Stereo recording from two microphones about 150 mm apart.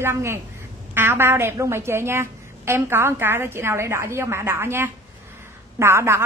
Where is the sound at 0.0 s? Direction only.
15° right (ahead or behind).